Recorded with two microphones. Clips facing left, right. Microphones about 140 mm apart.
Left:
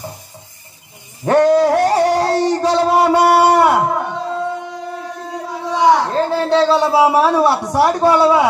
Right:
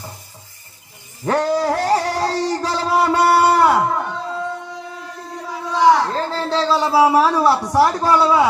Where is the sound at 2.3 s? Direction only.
70° left (ahead or behind).